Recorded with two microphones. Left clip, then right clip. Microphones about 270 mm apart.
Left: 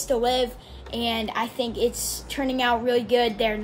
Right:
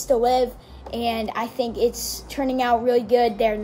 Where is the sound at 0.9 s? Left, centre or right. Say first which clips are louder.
Right 2 dB; left.